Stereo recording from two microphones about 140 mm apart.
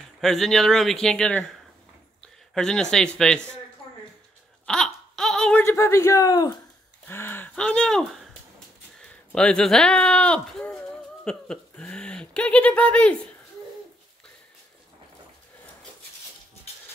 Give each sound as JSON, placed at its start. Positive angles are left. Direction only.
{"t": 0.2, "sound": "a man's voice", "side_deg": 5}
{"t": 4.6, "sound": "a sound", "side_deg": 5}
{"t": 5.6, "sound": "a man's voice", "side_deg": 15}
{"t": 9.3, "sound": "speech", "side_deg": 5}